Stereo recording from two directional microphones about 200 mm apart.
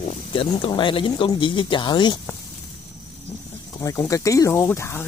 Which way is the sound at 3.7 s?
15° left (ahead or behind).